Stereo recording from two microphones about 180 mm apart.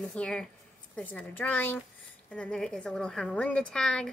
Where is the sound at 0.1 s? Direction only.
5° left (ahead or behind).